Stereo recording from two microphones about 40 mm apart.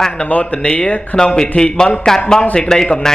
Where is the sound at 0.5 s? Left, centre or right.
Left.